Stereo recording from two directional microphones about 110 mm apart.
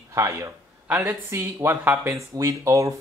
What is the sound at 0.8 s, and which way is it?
Speech, 15° right (ahead or behind).